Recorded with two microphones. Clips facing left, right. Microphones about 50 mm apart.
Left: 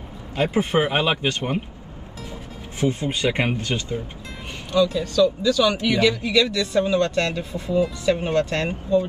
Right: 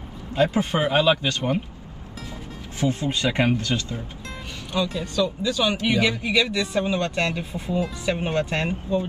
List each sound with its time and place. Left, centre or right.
0.4 s speech: left
2.8 s speech: left
4.9 s speech: right